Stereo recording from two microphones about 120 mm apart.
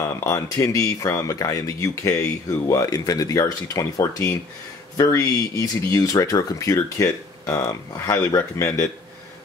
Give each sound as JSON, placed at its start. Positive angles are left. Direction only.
{"t": 0.2, "sound": "speech", "side_deg": 25}